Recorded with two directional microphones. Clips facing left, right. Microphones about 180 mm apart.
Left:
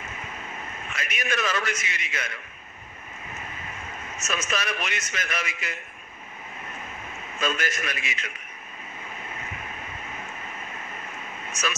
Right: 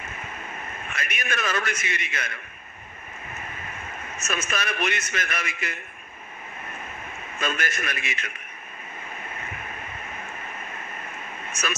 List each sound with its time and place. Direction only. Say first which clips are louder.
0.8 s a man's voice: left 1 dB; 55° right (ahead or behind)
4.2 s a man's voice: even; 55° right (ahead or behind)
7.3 s a man's voice: left 1 dB; 55° right (ahead or behind)
11.6 s a man's voice: left 1 dB; 55° right (ahead or behind)